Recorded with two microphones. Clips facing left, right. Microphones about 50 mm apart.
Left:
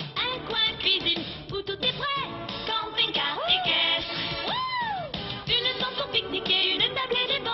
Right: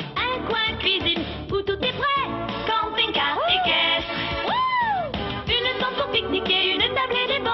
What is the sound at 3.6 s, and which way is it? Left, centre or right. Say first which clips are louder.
Music: right 5 dB; right.